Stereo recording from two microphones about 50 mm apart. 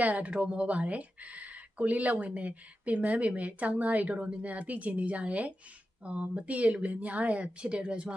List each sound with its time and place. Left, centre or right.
0.0 s speech: right